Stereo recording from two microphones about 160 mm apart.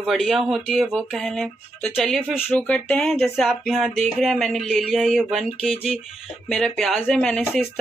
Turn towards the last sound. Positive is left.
turn(degrees=0)  # may be behind; listen again after turning